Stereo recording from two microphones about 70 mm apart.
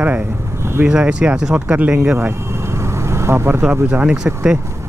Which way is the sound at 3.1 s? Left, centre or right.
Right.